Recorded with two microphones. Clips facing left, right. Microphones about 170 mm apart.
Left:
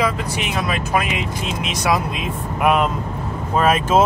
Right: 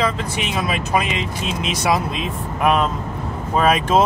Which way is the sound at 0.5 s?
Centre (ahead or behind).